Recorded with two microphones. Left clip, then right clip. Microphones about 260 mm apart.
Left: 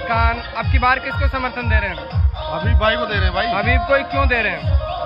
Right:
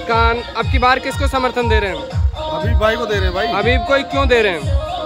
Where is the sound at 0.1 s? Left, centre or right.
Centre.